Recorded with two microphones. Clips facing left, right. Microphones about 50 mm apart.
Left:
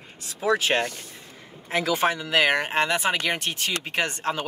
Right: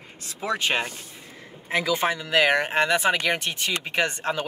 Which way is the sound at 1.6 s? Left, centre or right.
Centre.